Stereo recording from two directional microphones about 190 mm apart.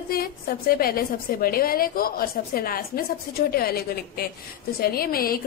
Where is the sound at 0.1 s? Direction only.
50° left (ahead or behind).